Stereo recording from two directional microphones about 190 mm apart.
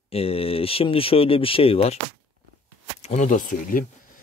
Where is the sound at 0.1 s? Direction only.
30° left (ahead or behind).